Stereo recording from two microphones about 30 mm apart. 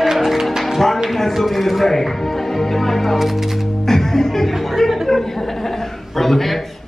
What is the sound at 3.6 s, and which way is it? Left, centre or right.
Music, centre.